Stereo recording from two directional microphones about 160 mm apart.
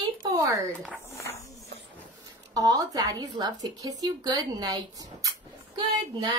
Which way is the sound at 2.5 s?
25° right (ahead or behind).